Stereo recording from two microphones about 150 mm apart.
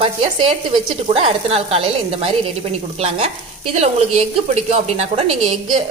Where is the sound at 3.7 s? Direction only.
45° right (ahead or behind).